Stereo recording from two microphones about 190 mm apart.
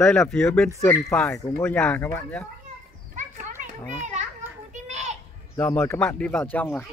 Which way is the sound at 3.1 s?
40° right (ahead or behind).